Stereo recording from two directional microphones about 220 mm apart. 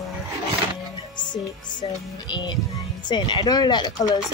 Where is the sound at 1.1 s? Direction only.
20° left (ahead or behind).